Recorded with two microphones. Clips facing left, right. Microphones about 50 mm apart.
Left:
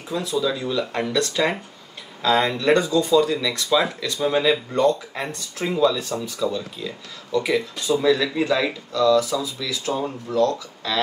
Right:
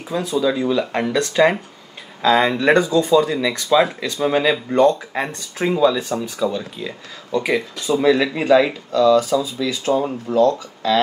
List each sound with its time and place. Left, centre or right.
0.1 s speech: right
4.7 s speech: right
5.1 s speech: right